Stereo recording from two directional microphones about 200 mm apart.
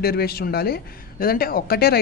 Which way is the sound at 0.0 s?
50° left (ahead or behind).